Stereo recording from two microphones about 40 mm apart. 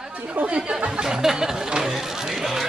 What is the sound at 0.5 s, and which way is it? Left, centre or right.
Speech, right.